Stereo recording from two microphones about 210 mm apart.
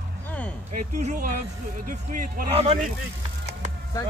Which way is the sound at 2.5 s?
30° right (ahead or behind).